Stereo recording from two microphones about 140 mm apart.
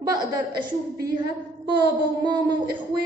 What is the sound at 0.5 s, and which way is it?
Speech, 90° right.